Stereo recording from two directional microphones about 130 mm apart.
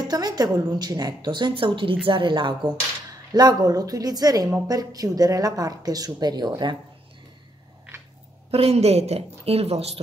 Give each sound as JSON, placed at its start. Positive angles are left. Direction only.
{"t": 0.0, "sound": "a woman's voice", "side_deg": -30}
{"t": 8.5, "sound": "a woman's voice", "side_deg": -50}